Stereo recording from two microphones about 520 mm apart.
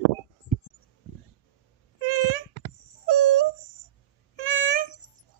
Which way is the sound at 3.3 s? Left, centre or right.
Left.